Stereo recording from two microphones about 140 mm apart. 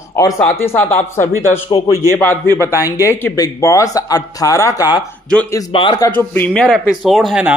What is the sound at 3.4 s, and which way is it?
Speech, 25° left (ahead or behind).